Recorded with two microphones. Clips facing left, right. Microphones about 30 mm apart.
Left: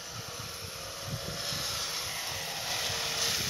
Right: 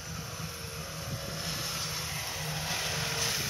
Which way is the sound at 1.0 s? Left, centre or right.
Centre.